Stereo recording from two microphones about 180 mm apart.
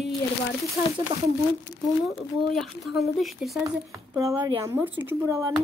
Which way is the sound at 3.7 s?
15° right (ahead or behind).